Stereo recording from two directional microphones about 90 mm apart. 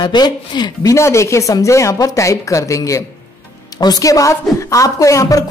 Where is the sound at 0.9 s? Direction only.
35° left (ahead or behind).